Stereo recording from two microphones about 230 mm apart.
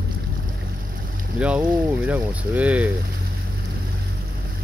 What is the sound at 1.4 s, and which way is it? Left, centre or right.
Speech, centre.